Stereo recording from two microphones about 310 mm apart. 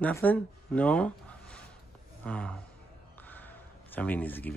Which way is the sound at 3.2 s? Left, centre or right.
Centre.